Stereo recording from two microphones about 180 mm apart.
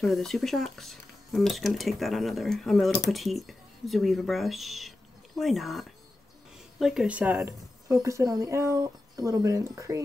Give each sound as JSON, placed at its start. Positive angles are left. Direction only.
{"t": 0.0, "sound": "a woman's voice", "side_deg": 0}